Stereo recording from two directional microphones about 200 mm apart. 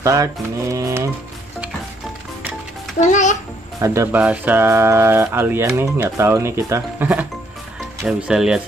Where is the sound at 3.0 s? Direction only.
40° left (ahead or behind).